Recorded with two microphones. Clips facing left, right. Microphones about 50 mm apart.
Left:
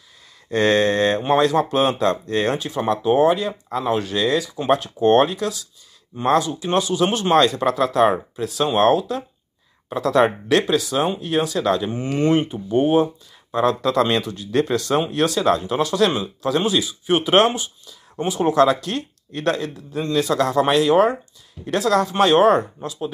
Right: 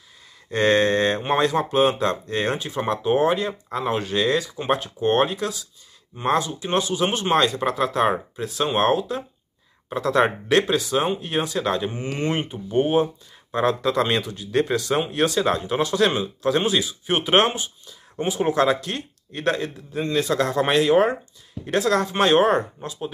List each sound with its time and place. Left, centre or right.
0.5 s speech: centre
5.4 s speech: right
12.8 s speech: centre